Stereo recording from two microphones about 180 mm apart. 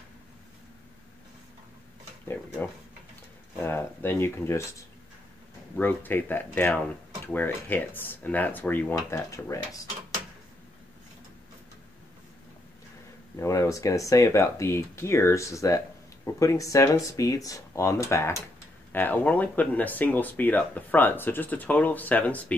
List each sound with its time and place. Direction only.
3.5 s speech: 15° left (ahead or behind)
13.4 s speech: 15° left (ahead or behind)